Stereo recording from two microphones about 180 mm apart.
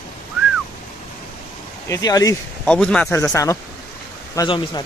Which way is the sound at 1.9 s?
20° left (ahead or behind).